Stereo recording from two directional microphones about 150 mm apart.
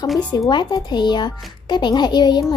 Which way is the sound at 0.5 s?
30° left (ahead or behind).